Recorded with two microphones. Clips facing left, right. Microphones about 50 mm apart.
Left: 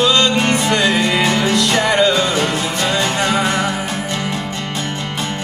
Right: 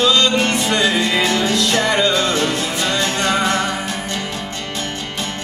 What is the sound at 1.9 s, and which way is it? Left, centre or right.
Music, centre.